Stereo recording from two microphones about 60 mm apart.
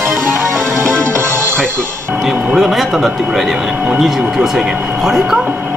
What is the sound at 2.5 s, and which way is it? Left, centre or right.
Speech, centre.